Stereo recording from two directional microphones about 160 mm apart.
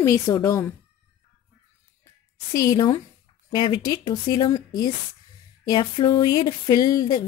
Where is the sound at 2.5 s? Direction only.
25° left (ahead or behind).